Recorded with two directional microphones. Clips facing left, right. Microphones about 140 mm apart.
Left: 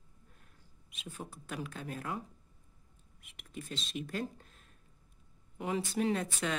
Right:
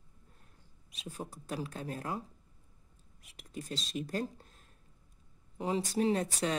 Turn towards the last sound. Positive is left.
turn(degrees=-35)  # may be behind; listen again after turning